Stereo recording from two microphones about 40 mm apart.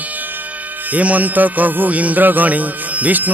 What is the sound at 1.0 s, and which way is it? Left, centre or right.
Music, right.